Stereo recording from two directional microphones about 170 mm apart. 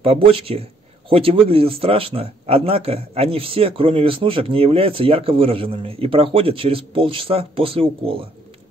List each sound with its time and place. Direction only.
0.0 s a man's voice: 35° right (ahead or behind)